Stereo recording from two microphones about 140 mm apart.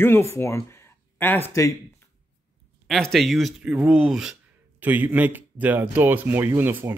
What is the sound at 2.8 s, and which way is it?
Speech, centre (ahead or behind).